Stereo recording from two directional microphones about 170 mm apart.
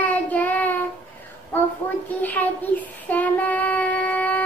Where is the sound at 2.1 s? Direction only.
10° left (ahead or behind).